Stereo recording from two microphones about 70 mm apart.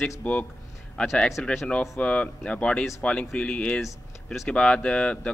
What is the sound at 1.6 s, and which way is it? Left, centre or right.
Speech, centre.